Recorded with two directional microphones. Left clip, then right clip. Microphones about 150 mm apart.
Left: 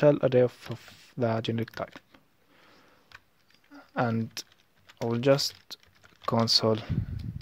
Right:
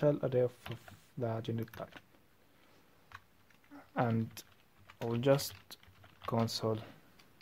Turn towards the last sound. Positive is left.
turn(degrees=35)  # may be behind; listen again after turning